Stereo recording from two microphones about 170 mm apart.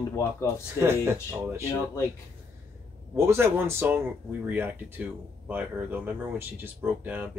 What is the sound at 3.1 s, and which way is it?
Speech, 15° right (ahead or behind).